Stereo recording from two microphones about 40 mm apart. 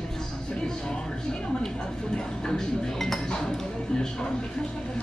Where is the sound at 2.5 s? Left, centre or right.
Centre.